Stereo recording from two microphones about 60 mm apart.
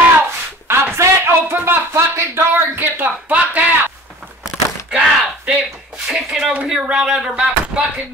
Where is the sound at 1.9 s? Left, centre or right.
Right.